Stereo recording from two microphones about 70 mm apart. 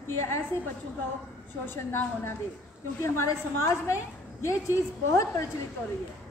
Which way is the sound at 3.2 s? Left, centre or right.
Left.